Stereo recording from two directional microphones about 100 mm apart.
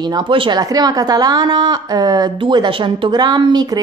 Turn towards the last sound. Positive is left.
turn(degrees=-45)  # may be behind; listen again after turning